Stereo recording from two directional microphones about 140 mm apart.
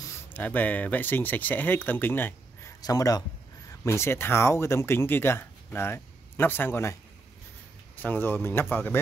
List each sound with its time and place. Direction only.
0.3 s speech: 10° left (ahead or behind)
2.8 s speech: 25° left (ahead or behind)